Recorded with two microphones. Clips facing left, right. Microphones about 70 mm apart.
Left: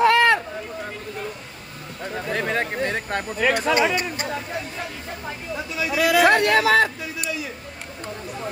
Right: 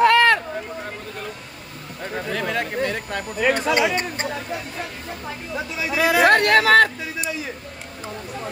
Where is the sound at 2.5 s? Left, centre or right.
Left.